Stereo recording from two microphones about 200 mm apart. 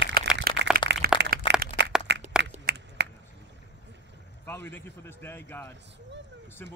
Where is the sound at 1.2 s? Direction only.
60° right (ahead or behind).